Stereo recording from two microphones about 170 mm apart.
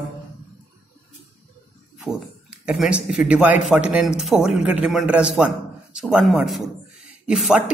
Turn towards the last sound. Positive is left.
turn(degrees=-5)  # may be behind; listen again after turning